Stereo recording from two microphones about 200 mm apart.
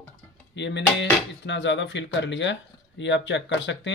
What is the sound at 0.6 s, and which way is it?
Speech, 60° left (ahead or behind).